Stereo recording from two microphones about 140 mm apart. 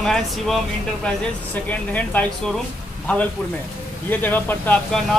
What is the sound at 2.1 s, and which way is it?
Speech, 10° left (ahead or behind).